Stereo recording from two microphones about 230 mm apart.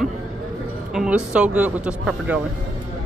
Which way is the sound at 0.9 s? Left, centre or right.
Centre.